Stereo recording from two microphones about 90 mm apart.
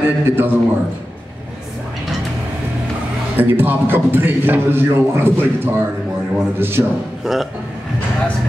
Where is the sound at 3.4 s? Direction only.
20° right (ahead or behind).